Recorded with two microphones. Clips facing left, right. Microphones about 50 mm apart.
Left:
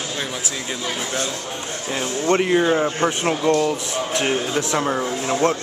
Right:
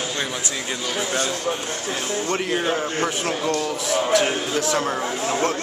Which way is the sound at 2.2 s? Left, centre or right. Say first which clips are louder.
Left 8 dB; left.